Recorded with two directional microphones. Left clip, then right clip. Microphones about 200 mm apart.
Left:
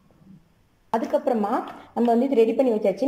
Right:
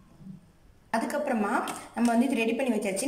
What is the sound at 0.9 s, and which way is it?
A woman's voice, 25° left (ahead or behind).